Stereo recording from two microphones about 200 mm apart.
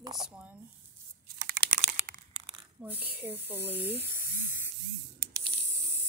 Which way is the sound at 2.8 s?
10° right (ahead or behind).